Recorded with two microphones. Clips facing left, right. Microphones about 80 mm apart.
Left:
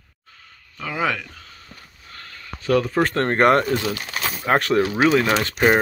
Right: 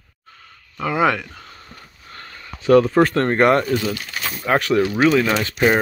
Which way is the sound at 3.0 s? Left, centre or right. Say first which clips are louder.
Right 1 dB; left.